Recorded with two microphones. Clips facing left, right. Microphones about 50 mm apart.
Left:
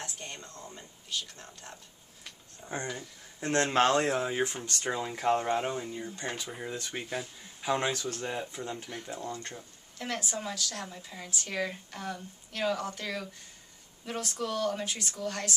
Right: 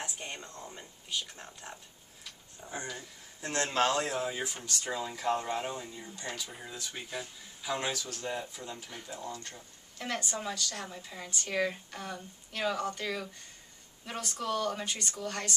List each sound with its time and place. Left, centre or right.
0.0 s a sound: centre
3.3 s speech: left
9.6 s speech: centre